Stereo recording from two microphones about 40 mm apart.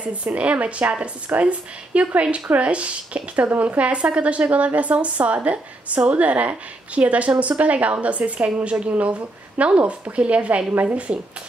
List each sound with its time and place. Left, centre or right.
0.0 s a woman's voice: right